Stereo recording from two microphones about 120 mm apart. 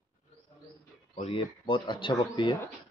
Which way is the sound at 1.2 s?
50° left (ahead or behind).